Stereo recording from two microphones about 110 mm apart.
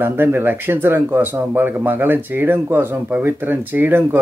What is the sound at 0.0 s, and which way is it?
Speech, 20° right (ahead or behind).